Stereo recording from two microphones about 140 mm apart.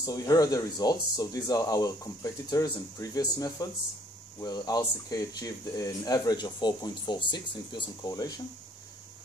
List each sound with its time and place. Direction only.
0.0 s speech: 25° left (ahead or behind)